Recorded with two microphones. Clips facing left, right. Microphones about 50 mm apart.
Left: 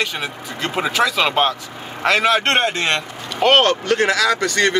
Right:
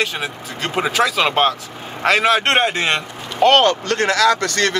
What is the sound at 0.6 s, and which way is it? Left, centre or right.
A man's voice, centre.